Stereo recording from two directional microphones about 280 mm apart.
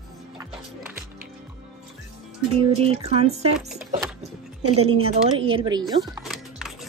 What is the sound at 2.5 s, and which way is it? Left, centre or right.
Speech, right.